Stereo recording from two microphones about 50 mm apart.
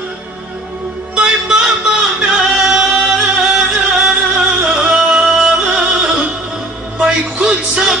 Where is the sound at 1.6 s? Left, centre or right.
Centre.